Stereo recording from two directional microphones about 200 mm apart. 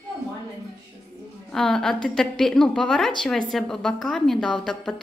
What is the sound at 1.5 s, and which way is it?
A woman's voice, 5° left (ahead or behind).